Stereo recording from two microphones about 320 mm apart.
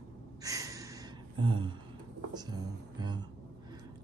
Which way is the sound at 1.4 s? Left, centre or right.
Centre.